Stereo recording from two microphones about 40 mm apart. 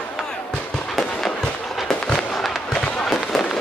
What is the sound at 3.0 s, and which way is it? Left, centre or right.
Fireworks, centre.